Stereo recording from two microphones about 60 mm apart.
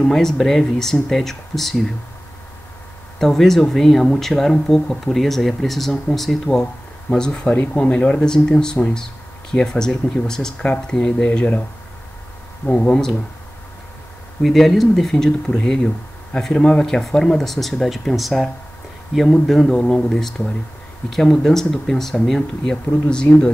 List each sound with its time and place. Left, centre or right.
0.0 s speech: centre
3.2 s speech: centre; by 11.6 s left
12.6 s speech: centre
14.4 s speech: centre